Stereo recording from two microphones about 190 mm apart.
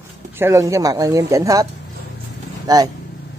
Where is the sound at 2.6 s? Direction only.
20° right (ahead or behind).